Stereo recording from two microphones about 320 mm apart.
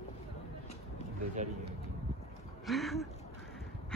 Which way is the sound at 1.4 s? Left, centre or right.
Right.